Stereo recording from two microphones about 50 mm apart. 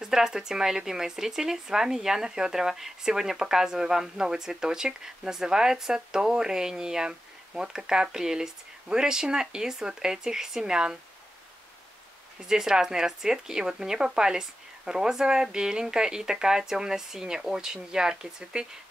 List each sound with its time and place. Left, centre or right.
0.0 s speech: centre
12.4 s speech: centre